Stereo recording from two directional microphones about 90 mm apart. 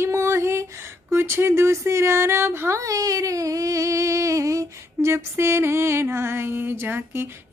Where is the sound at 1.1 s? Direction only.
30° right (ahead or behind).